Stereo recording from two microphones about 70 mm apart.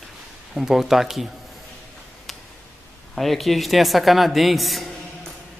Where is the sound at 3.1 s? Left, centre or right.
Centre.